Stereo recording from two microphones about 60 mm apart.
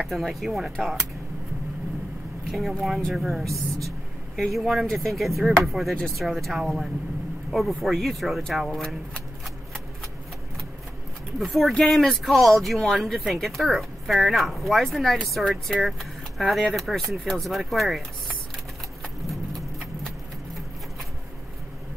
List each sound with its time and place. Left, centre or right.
0.1 s speech: centre
2.5 s speech: centre
8.6 s speech: centre
11.3 s speech: centre